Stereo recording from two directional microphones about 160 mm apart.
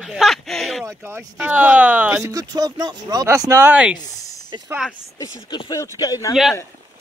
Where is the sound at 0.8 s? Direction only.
15° right (ahead or behind).